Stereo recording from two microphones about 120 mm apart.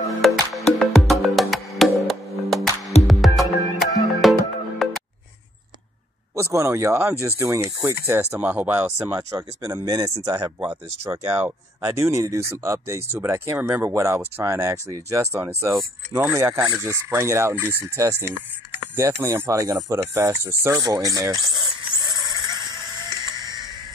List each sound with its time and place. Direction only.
0.2 s music: centre (ahead or behind)
6.3 s speech: 20° right (ahead or behind)
8.4 s speech: 15° right (ahead or behind)
9.3 s speech: 30° right (ahead or behind)
22.1 s a sound: 35° right (ahead or behind)
23.3 s music: 35° right (ahead or behind)